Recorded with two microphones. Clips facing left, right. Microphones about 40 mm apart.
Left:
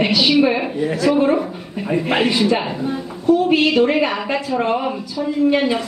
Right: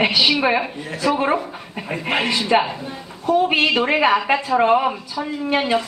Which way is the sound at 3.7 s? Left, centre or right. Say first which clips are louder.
Left 1 dB; right.